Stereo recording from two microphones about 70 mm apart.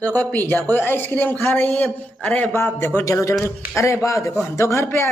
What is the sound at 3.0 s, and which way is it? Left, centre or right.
Speech, left.